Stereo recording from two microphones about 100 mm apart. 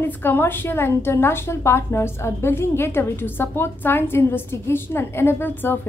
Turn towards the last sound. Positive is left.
turn(degrees=20)  # may be behind; listen again after turning